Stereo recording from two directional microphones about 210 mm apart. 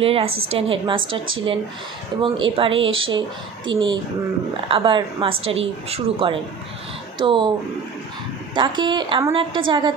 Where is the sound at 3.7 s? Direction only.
20° right (ahead or behind).